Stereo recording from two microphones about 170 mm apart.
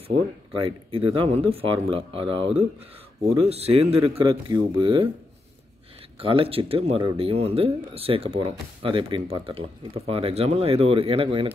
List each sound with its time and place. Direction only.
0.6 s speech: 30° right (ahead or behind)
6.2 s speech: 30° right (ahead or behind)